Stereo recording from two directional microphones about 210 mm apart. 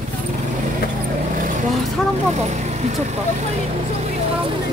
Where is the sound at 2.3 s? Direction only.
30° right (ahead or behind).